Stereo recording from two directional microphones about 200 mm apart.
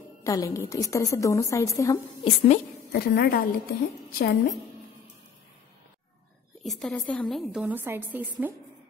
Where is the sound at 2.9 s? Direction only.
50° left (ahead or behind).